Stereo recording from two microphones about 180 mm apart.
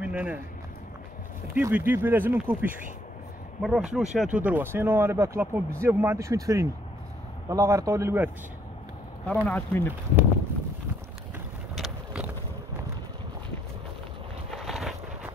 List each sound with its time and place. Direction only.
0.0 s speech: 10° right (ahead or behind)
1.5 s speech: 10° right (ahead or behind)
9.2 s speech: 10° left (ahead or behind)
11.7 s vehicle: 5° right (ahead or behind)
14.5 s a sound: centre (ahead or behind)